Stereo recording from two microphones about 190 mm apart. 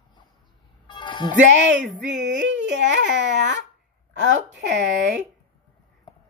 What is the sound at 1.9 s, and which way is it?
Speech, 70° right (ahead or behind).